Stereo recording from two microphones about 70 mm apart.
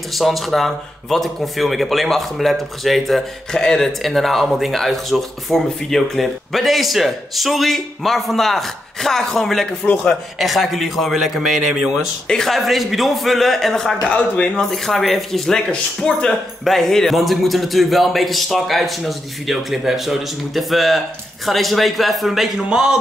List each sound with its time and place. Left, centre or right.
0.1 s speech: centre
14.0 s speech: left
14.5 s speech: centre